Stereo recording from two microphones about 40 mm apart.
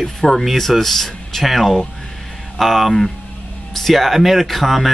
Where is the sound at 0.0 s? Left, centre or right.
Centre.